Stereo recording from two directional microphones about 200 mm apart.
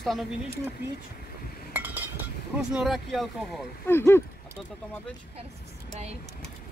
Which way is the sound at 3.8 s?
10° left (ahead or behind).